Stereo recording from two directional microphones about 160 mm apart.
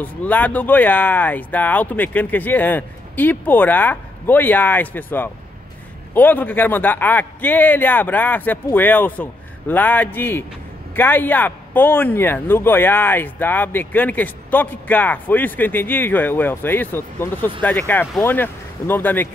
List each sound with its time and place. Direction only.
0.0 s speech: 10° left (ahead or behind)